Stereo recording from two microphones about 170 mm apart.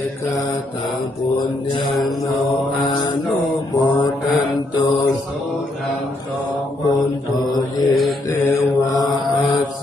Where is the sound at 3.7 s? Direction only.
25° left (ahead or behind).